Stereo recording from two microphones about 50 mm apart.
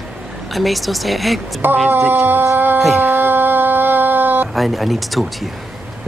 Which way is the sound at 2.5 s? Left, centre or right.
Right.